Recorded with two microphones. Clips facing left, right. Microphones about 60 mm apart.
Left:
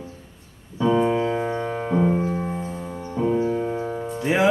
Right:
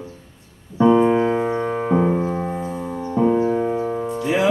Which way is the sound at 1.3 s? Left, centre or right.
Right.